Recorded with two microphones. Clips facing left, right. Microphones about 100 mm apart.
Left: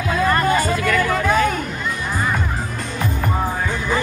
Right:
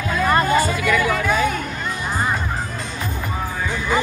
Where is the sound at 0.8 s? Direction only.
5° right (ahead or behind).